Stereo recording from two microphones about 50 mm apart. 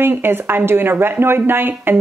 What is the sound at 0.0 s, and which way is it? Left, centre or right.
Speech, right.